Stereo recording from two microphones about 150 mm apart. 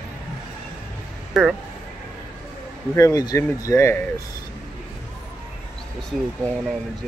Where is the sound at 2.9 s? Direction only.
20° left (ahead or behind).